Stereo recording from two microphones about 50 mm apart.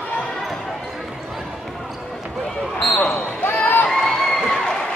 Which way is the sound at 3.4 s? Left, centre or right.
Left.